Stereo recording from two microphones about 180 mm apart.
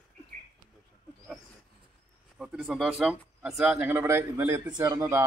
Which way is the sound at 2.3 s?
5° right (ahead or behind).